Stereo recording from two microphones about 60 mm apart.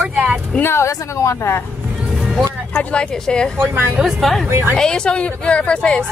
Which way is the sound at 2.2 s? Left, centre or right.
Centre.